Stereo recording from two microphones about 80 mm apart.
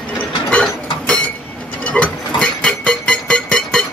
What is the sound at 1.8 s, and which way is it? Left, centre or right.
Music, centre.